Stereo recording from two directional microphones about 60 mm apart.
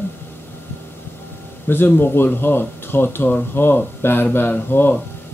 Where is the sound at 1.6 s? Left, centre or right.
Left.